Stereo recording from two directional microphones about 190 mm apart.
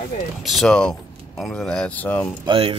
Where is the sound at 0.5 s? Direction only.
Centre (ahead or behind).